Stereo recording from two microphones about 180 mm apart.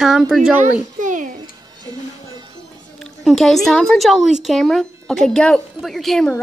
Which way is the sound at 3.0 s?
Centre (ahead or behind).